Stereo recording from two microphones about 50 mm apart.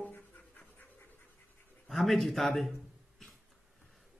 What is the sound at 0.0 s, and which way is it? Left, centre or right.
Dog, left.